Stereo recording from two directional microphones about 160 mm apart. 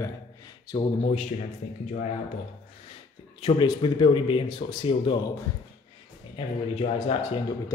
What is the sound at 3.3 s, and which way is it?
Speech, 30° left (ahead or behind).